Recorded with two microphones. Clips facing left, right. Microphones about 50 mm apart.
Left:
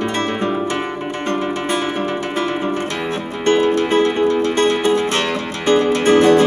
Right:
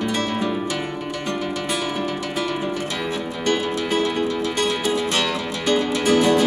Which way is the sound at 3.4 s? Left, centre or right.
Left.